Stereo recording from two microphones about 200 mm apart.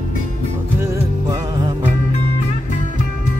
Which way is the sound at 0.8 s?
20° right (ahead or behind).